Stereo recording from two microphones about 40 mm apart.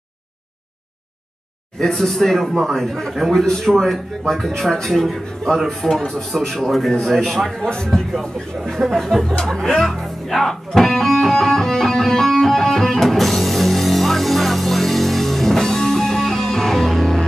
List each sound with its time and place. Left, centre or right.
1.8 s speech: centre
7.6 s speech: left
8.7 s speech: centre
9.4 s music: centre